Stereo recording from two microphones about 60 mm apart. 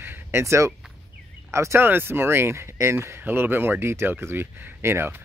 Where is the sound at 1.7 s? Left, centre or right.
Right.